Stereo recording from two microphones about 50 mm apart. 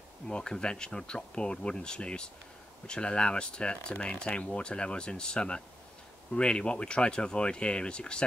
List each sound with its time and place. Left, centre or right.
0.3 s speech: centre